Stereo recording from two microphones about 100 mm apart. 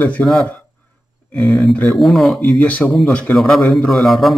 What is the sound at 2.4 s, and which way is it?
A man's voice, 15° left (ahead or behind).